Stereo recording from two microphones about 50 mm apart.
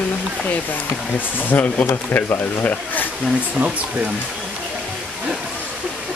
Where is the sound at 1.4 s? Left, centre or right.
Left.